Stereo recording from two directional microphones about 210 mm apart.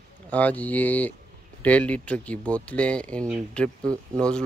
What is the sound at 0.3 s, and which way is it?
Speech, 5° left (ahead or behind).